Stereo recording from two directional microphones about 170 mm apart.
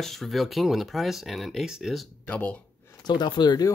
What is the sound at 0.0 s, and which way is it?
Speech, centre (ahead or behind).